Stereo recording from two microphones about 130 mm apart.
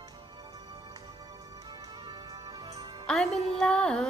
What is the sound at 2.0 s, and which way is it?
Music, 30° right (ahead or behind).